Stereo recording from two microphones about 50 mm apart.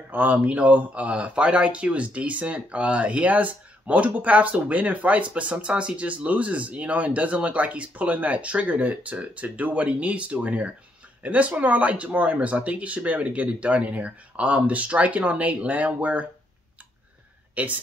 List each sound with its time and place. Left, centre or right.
0.1 s speech: right
17.6 s speech: right